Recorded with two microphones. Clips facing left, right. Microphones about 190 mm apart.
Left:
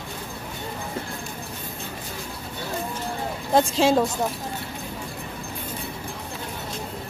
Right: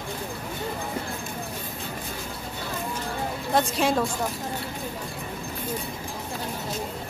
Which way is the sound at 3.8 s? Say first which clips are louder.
Left 6 dB; 25° left (ahead or behind).